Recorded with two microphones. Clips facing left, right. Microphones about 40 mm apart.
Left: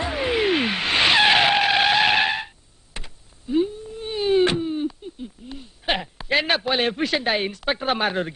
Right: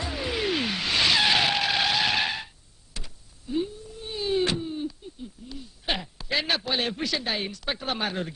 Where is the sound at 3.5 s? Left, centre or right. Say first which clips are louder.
Left 7 dB; left.